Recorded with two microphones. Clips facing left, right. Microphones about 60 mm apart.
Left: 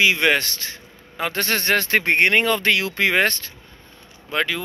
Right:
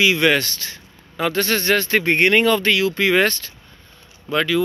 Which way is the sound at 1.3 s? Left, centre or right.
Left.